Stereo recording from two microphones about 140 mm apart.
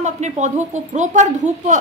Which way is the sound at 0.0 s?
55° right (ahead or behind).